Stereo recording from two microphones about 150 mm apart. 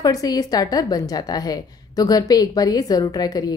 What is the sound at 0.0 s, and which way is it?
A woman's voice, 25° left (ahead or behind).